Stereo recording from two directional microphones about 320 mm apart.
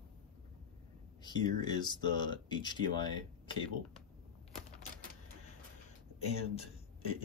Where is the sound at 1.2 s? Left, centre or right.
Centre.